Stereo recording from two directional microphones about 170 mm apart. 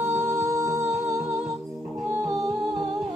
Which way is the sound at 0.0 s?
15° right (ahead or behind).